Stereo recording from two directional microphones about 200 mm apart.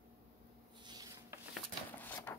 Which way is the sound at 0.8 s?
20° right (ahead or behind).